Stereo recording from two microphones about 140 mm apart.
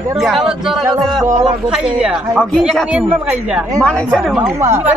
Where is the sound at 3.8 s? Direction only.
5° left (ahead or behind).